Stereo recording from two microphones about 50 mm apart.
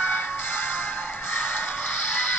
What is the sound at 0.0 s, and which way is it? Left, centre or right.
Music, left.